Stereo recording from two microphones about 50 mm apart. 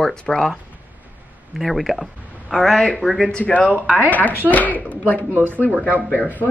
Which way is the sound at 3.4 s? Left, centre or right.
Left.